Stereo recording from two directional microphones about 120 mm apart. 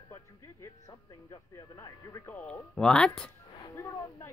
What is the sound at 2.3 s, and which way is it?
Speech, 10° left (ahead or behind).